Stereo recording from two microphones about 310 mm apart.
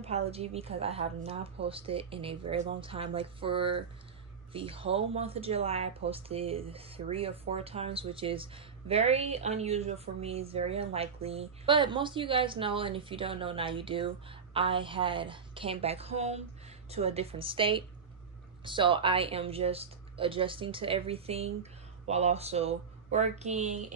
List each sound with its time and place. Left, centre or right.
0.0 s speech: centre